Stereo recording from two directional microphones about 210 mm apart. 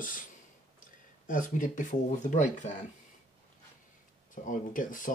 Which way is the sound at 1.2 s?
40° left (ahead or behind).